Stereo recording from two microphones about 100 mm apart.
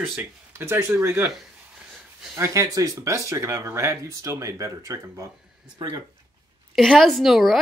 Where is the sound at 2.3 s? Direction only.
25° right (ahead or behind); by 6.0 s 40° right (ahead or behind).